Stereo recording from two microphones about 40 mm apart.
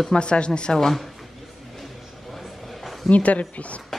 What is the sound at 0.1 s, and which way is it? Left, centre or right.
Speech, left.